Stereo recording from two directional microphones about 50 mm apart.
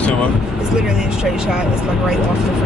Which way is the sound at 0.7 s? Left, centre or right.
Centre.